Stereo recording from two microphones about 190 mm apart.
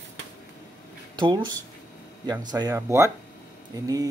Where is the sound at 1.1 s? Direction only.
25° right (ahead or behind).